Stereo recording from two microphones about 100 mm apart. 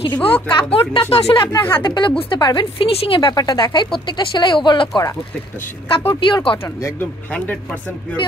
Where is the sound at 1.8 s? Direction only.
50° left (ahead or behind).